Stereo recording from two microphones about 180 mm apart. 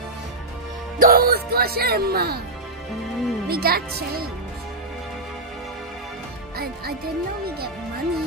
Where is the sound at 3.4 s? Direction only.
60° right (ahead or behind).